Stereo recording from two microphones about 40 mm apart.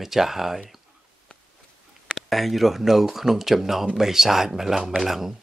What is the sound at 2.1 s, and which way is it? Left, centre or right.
Speech, centre.